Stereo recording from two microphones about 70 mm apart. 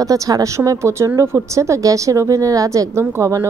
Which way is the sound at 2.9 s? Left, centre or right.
Right.